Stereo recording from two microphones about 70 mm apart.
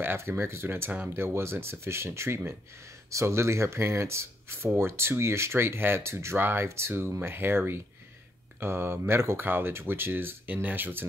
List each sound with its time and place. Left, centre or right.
0.0 s speech: right